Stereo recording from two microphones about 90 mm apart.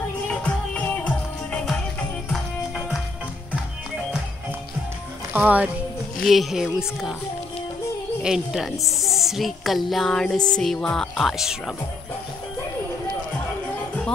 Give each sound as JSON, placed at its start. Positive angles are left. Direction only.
{"t": 0.8, "sound": "music", "side_deg": 15}
{"t": 5.3, "sound": "speech", "side_deg": -20}
{"t": 6.1, "sound": "a woman's voice", "side_deg": 0}
{"t": 8.2, "sound": "a woman's voice", "side_deg": -5}